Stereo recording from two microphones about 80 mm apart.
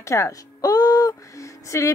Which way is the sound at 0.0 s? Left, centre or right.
Left.